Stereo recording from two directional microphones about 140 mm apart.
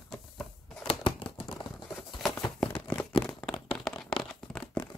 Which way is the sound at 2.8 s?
15° left (ahead or behind).